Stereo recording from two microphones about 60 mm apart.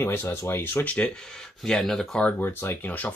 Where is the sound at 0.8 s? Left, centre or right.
Left.